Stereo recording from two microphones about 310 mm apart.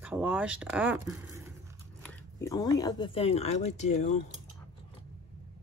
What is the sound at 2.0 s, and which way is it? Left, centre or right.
Speech, centre.